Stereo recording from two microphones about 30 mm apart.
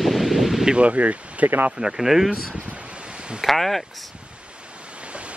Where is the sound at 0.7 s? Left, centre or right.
Right.